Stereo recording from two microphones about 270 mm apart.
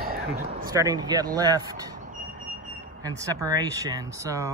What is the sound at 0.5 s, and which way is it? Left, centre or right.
Speech, centre.